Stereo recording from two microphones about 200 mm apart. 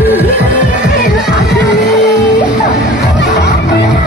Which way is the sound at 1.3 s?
60° left (ahead or behind).